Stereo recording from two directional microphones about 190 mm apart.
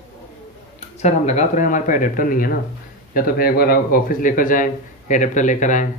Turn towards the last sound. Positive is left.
turn(degrees=40)  # may be behind; listen again after turning